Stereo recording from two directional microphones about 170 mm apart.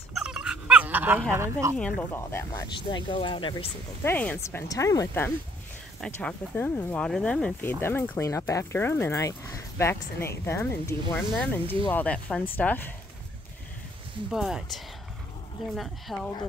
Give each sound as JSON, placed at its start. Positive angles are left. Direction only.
{"t": 0.1, "sound": "dog", "side_deg": -5}
{"t": 1.3, "sound": "speech", "side_deg": -15}
{"t": 2.0, "sound": "speech", "side_deg": 15}
{"t": 4.0, "sound": "speech", "side_deg": 10}
{"t": 5.9, "sound": "speech", "side_deg": 5}
{"t": 14.3, "sound": "speech", "side_deg": 0}